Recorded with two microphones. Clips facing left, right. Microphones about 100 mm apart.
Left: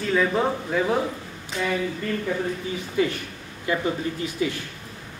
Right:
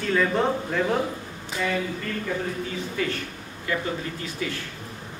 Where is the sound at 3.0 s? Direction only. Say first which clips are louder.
Left 7 dB; 20° left (ahead or behind).